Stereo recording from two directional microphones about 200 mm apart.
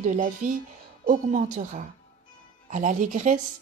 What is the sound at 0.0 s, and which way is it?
Speech, 40° right (ahead or behind).